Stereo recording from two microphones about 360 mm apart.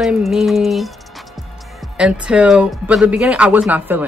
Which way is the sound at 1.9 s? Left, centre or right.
Centre.